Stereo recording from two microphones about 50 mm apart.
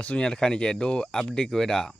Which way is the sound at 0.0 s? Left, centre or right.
Left.